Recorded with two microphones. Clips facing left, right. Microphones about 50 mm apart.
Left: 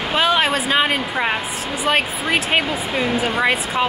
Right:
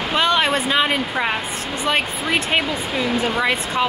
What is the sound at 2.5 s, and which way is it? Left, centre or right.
Speech, centre.